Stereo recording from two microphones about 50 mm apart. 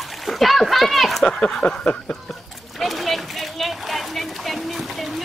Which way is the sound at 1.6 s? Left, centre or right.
Left.